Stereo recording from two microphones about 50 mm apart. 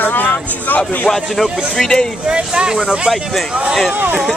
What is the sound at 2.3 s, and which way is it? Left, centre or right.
Speech, centre.